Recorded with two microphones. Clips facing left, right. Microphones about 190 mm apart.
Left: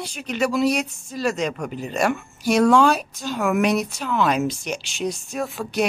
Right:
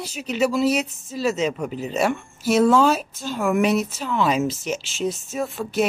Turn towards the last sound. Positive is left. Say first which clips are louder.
# right 1 dB
turn(degrees=0)  # may be behind; listen again after turning